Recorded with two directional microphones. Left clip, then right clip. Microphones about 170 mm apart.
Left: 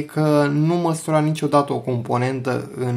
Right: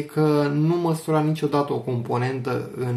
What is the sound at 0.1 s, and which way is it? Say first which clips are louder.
Speech: left 3 dB; 55° left (ahead or behind).